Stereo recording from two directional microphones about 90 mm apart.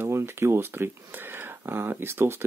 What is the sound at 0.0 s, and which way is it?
Speech, 30° right (ahead or behind).